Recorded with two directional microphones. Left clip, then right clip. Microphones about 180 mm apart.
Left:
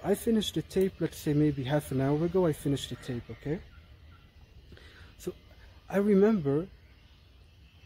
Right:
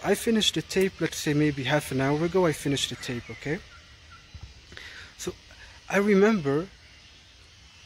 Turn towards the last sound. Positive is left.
turn(degrees=-15)  # may be behind; listen again after turning